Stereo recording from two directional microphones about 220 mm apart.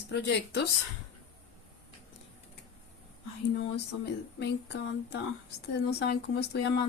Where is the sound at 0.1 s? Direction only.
50° left (ahead or behind).